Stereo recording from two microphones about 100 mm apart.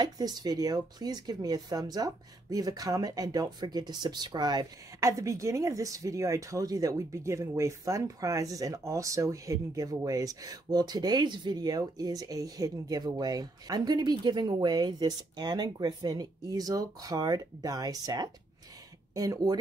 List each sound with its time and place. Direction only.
0.0 s speech: 45° right (ahead or behind)